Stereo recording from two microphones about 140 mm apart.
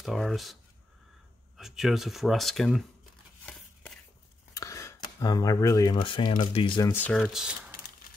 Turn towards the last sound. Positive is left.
turn(degrees=-5)  # may be behind; listen again after turning